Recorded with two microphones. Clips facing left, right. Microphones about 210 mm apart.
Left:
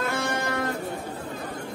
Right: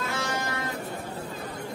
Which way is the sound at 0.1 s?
55° left (ahead or behind).